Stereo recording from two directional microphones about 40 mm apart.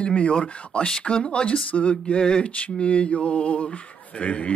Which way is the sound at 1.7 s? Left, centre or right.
Left.